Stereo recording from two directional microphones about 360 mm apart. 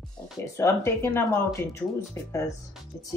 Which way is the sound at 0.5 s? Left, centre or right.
Centre.